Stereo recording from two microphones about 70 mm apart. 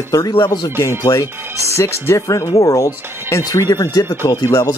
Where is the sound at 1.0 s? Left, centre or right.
Left.